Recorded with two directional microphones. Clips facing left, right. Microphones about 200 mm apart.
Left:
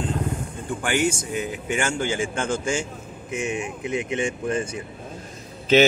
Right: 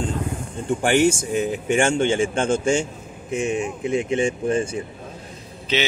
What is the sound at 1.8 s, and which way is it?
A man's voice, 25° right (ahead or behind).